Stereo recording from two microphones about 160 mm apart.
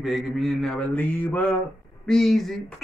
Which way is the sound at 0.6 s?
10° left (ahead or behind).